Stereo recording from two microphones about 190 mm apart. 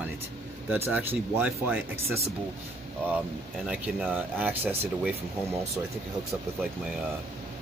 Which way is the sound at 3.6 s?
5° right (ahead or behind).